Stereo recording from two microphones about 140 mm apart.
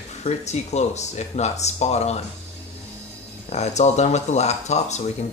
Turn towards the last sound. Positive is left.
turn(degrees=55)  # may be behind; listen again after turning